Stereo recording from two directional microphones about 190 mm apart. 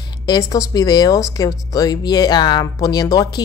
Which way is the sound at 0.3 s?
20° left (ahead or behind).